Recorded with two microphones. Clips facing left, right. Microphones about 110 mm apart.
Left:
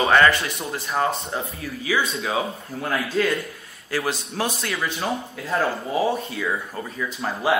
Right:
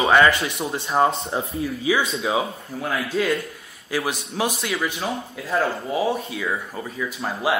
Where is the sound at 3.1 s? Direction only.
5° right (ahead or behind).